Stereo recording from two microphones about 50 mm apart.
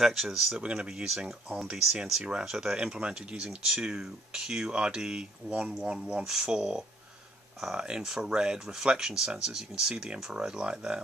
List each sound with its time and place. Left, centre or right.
0.0 s speech: centre
0.6 s speech: centre
2.8 s speech: right